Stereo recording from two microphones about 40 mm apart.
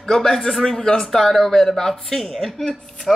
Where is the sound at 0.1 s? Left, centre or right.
Centre.